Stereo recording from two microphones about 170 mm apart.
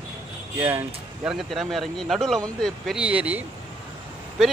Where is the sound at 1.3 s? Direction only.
Centre (ahead or behind).